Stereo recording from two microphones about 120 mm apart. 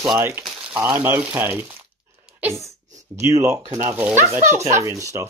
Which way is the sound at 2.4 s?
20° right (ahead or behind).